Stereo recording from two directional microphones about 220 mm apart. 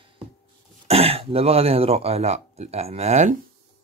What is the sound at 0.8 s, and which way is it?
Speech, 25° right (ahead or behind).